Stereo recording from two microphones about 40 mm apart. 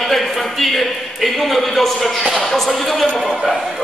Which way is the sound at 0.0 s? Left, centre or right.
Centre.